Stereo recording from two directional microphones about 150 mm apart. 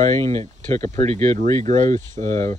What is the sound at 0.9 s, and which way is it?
Speech, 45° right (ahead or behind).